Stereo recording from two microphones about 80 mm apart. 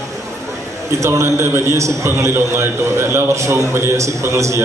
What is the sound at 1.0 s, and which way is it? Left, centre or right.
A man's voice, right.